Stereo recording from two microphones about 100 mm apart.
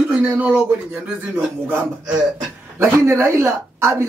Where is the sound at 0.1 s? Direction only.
15° right (ahead or behind).